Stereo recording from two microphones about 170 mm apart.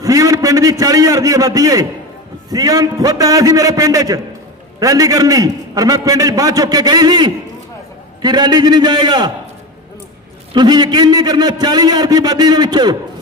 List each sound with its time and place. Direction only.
0.0 s a man's voice: 20° right (ahead or behind)
10.5 s a man's voice: 25° right (ahead or behind)